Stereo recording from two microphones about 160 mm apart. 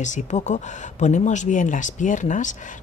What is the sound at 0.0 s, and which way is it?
Speech, 50° left (ahead or behind).